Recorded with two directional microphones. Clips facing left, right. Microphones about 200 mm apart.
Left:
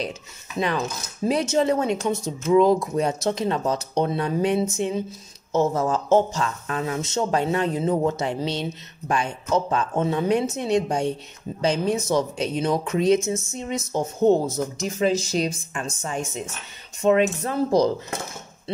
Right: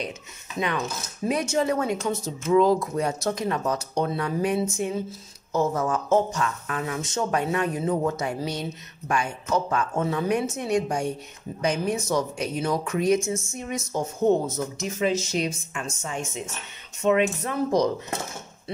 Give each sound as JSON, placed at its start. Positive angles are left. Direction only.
{"t": 0.6, "sound": "a woman's voice", "side_deg": 30}